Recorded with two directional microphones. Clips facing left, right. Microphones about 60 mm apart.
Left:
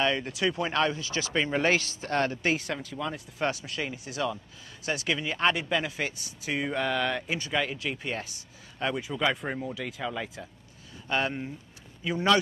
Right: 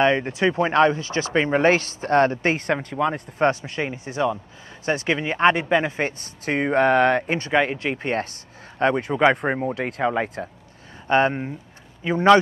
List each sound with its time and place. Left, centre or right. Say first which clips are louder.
0.0 s speech: right 8 dB; right
10.0 s speech: right 13 dB; right